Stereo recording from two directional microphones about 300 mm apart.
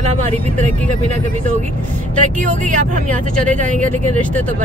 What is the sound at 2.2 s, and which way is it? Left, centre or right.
Speech, right.